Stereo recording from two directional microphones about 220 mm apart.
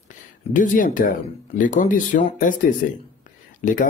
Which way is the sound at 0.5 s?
35° left (ahead or behind).